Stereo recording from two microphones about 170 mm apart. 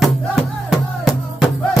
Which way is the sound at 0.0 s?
Centre (ahead or behind).